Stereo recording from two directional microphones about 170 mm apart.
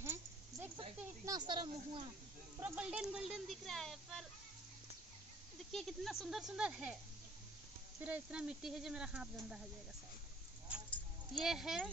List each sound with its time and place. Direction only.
0.0 s a sound: 15° right (ahead or behind)
1.2 s speech: 25° right (ahead or behind)
2.6 s speech: 5° right (ahead or behind)
5.7 s speech: centre (ahead or behind)
8.0 s speech: 5° right (ahead or behind)
11.4 s speech: 5° right (ahead or behind)